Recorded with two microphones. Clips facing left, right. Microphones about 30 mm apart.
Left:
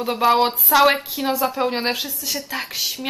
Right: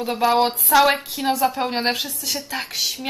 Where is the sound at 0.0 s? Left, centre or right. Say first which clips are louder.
Left 1 dB; centre.